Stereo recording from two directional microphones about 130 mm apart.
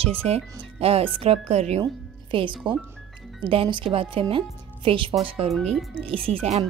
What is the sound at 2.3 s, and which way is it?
A woman's voice, 40° right (ahead or behind).